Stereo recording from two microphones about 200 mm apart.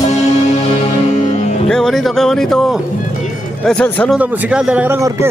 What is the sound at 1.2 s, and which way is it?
Music, 35° left (ahead or behind).